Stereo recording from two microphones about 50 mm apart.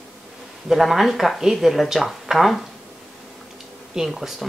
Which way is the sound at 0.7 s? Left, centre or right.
Centre.